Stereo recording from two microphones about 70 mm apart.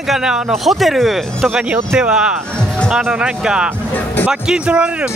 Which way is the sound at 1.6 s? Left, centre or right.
Centre.